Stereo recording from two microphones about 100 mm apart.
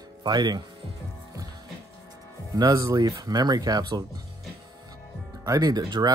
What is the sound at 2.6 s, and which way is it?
Speech, 35° right (ahead or behind).